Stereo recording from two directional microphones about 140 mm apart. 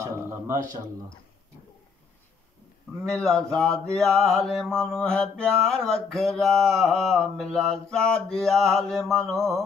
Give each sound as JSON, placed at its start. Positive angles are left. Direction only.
{"t": 0.0, "sound": "speech", "side_deg": -20}
{"t": 3.2, "sound": "mantra", "side_deg": 5}